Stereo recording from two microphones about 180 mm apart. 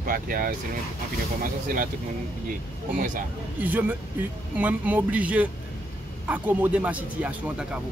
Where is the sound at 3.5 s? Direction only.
10° right (ahead or behind).